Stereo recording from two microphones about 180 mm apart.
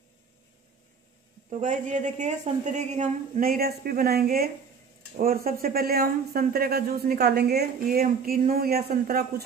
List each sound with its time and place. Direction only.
1.5 s a woman's voice: 45° right (ahead or behind); by 9.2 s 60° right (ahead or behind)